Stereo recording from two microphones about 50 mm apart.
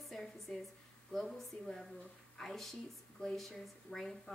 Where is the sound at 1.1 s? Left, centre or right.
Centre.